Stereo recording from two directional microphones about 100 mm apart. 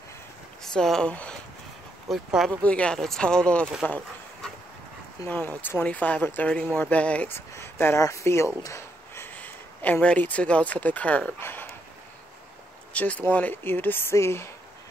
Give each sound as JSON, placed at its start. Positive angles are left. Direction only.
{"t": 0.6, "sound": "speech", "side_deg": 5}
{"t": 2.0, "sound": "speech", "side_deg": 0}
{"t": 2.6, "sound": "speech", "side_deg": 10}
{"t": 5.3, "sound": "speech", "side_deg": 15}
{"t": 12.9, "sound": "speech", "side_deg": 15}